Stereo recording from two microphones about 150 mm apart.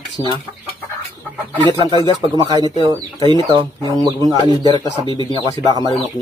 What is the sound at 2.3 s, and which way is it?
Speech, 30° right (ahead or behind).